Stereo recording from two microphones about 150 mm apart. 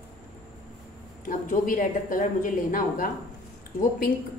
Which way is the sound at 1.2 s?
65° left (ahead or behind).